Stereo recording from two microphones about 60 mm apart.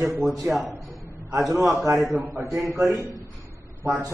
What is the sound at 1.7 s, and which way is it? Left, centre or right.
A man's voice, right.